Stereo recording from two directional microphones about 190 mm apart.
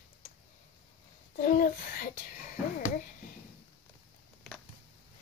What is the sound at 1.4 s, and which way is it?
A child's voice, 50° left (ahead or behind).